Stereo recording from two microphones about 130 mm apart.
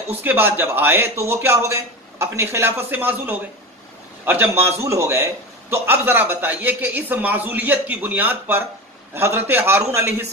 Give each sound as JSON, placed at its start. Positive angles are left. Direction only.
{"t": 0.1, "sound": "a man's voice", "side_deg": -15}